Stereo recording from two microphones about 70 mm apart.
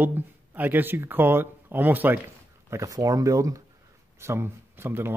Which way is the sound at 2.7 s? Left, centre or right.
Right.